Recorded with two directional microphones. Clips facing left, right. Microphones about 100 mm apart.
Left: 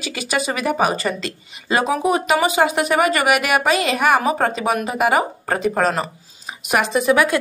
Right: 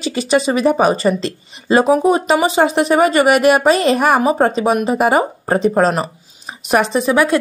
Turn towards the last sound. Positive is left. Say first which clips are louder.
# right 2 dB
turn(degrees=-30)  # may be behind; listen again after turning